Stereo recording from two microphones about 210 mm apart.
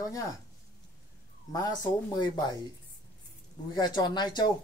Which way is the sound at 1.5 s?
20° left (ahead or behind).